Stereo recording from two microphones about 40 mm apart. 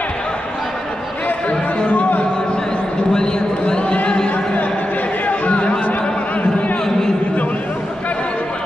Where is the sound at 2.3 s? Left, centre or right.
Left.